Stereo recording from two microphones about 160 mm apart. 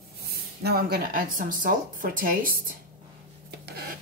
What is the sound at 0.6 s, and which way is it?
A woman's voice, 75° right (ahead or behind).